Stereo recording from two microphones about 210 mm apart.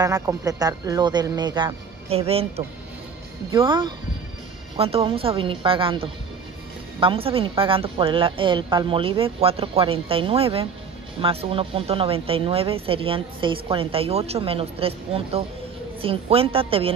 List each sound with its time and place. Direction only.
0.0 s speech: 15° right (ahead or behind)